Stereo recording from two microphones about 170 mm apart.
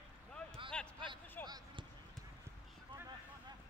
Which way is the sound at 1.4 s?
25° right (ahead or behind).